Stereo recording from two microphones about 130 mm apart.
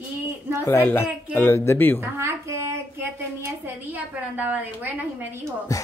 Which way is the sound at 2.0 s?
20° right (ahead or behind).